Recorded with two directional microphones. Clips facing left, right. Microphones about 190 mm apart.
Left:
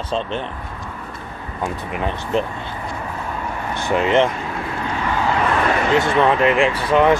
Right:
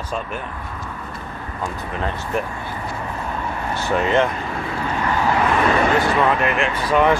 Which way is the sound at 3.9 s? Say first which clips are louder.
Left 2 dB; 15° left (ahead or behind).